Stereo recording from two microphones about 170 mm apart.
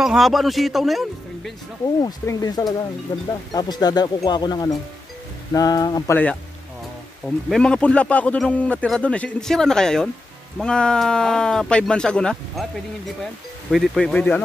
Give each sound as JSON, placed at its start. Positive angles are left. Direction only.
{"t": 0.0, "sound": "speech", "side_deg": 0}
{"t": 2.0, "sound": "speech", "side_deg": 20}
{"t": 7.4, "sound": "a man's voice", "side_deg": 5}